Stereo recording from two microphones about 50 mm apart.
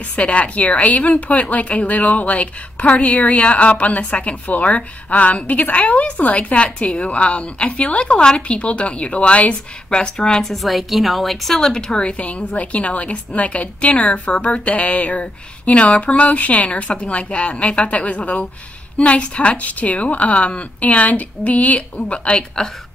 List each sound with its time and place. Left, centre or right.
0.1 s a woman's voice: left